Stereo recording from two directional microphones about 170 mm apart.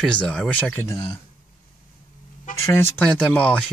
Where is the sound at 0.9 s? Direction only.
30° left (ahead or behind).